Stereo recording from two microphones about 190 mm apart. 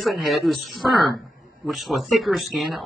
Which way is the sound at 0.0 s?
Centre (ahead or behind).